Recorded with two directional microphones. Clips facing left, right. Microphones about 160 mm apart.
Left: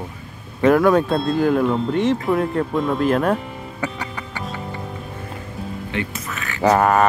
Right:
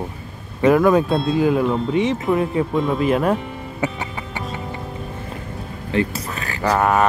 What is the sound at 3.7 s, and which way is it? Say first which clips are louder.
Music: right 3 dB; 25° right (ahead or behind).